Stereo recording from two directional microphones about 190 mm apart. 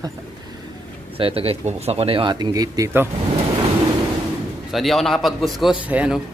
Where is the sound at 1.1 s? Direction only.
30° right (ahead or behind); by 3.1 s 15° right (ahead or behind).